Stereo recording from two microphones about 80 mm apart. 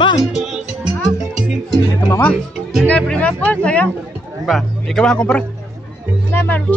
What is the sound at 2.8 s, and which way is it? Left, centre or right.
Speech, centre.